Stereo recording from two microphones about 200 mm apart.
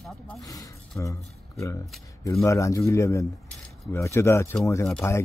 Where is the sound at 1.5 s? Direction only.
15° left (ahead or behind).